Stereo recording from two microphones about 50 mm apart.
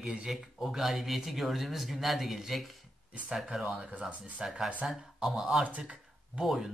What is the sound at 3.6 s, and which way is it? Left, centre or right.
Speech, centre.